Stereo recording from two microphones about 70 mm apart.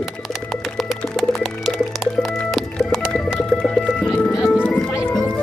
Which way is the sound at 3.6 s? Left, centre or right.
Centre.